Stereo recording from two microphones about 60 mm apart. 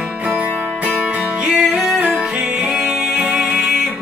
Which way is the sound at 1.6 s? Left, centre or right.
Centre.